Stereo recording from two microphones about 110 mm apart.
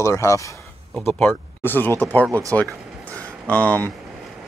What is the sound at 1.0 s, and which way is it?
Speech, 15° left (ahead or behind).